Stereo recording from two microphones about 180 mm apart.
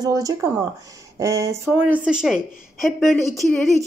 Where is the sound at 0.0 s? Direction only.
20° right (ahead or behind).